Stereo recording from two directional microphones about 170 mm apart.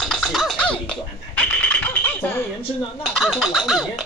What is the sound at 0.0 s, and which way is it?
Scratching, centre (ahead or behind).